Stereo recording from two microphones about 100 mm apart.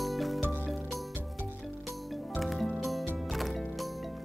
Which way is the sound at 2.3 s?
Centre (ahead or behind).